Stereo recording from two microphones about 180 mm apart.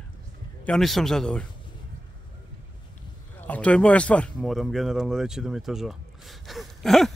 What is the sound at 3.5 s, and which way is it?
Speech, 5° left (ahead or behind).